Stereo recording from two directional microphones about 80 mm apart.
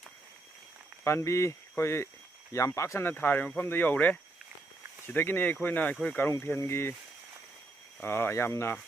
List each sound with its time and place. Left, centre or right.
1.0 s speech: left
8.0 s speech: left